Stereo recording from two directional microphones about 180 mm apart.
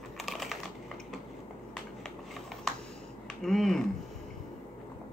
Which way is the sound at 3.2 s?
Centre (ahead or behind).